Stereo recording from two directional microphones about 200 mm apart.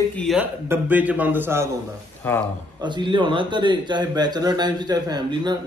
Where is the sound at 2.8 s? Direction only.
25° right (ahead or behind).